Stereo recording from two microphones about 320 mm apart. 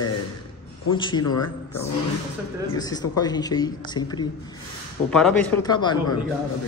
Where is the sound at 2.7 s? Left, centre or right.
Centre.